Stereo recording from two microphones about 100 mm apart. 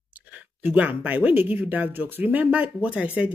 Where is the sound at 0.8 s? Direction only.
15° right (ahead or behind).